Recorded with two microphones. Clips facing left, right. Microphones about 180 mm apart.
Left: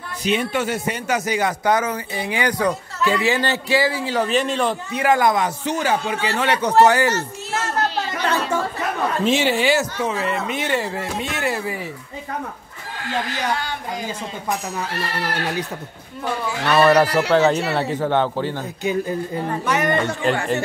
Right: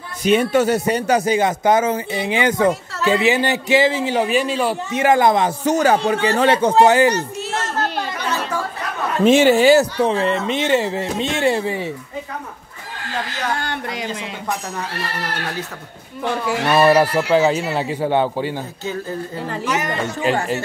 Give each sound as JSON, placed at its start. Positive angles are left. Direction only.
{"t": 0.2, "sound": "speech", "side_deg": -45}
{"t": 4.9, "sound": "speech", "side_deg": -25}
{"t": 5.7, "sound": "speech", "side_deg": -40}
{"t": 9.2, "sound": "speech", "side_deg": -50}
{"t": 13.7, "sound": "speech", "side_deg": -75}
{"t": 16.4, "sound": "speech", "side_deg": -5}
{"t": 19.7, "sound": "speech", "side_deg": 60}